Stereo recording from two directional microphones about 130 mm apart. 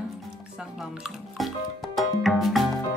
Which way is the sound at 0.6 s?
5° right (ahead or behind).